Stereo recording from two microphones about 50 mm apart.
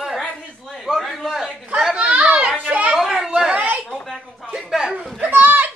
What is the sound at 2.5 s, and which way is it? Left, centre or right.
Children playing, right.